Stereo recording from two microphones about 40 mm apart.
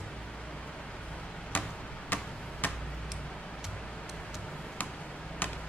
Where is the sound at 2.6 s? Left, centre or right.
Left.